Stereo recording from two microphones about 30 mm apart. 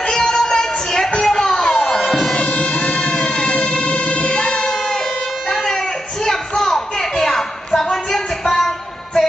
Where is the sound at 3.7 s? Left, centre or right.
Left.